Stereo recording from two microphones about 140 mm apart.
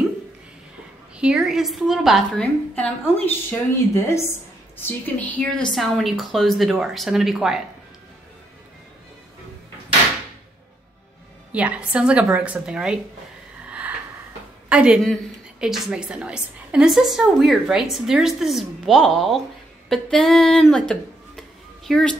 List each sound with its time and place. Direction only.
1.1 s a woman's voice: 5° right (ahead or behind)
2.7 s a woman's voice: 10° left (ahead or behind); by 7.6 s 5° right (ahead or behind)
11.5 s a woman's voice: 10° right (ahead or behind)
13.7 s a sound: 10° right (ahead or behind)
14.7 s a woman's voice: 5° right (ahead or behind)